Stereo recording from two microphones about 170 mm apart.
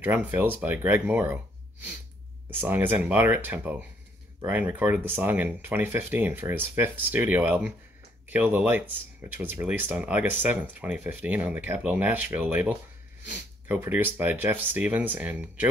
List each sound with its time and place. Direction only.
0.0 s speech: 10° right (ahead or behind)
2.6 s speech: 10° right (ahead or behind)